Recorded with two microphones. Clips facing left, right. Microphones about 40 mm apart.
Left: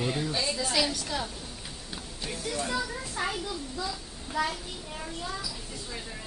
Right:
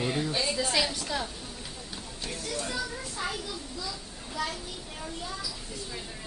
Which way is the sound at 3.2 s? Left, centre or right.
Left.